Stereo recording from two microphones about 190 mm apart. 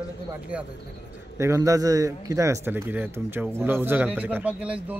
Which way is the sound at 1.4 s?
15° right (ahead or behind).